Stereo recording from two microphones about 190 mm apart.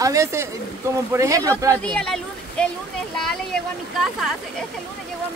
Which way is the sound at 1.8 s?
5° left (ahead or behind).